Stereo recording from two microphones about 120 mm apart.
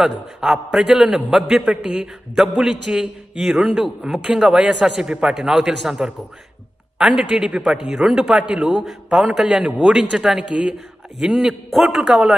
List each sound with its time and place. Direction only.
0.0 s a man's voice: centre (ahead or behind)